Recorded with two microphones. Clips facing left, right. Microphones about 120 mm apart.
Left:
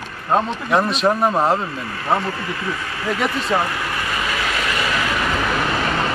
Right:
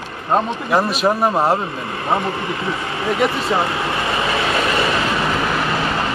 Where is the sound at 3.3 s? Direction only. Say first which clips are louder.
Right 1 dB; 25° right (ahead or behind).